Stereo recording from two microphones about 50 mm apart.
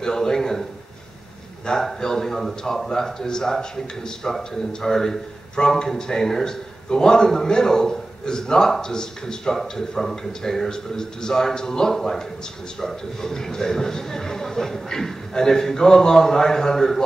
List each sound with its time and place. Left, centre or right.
0.0 s speech: centre
1.7 s speech: centre